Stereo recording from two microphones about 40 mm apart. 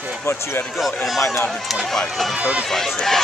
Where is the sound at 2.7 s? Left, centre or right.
Centre.